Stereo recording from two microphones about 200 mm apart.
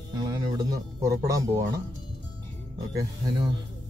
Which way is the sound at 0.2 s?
20° right (ahead or behind).